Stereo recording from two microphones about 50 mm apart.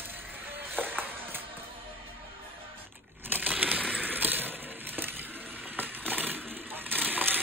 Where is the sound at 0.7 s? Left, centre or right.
Right.